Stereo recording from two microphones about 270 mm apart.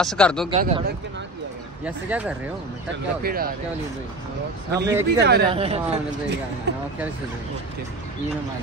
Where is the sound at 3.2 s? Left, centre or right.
Right.